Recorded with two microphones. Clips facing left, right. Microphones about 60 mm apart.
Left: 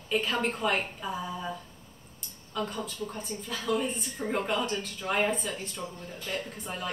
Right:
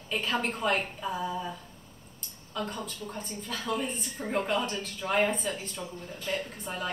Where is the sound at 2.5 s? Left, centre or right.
Centre.